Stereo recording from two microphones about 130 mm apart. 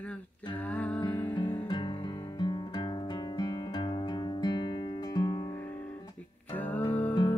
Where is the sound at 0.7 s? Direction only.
10° left (ahead or behind).